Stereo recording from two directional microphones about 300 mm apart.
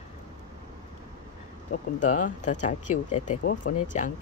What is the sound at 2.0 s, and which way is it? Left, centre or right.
Speech, left.